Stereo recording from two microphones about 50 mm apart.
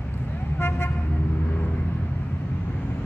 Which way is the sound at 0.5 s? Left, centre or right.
Left.